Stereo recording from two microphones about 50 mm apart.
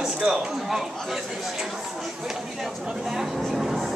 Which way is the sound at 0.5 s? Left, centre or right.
Centre.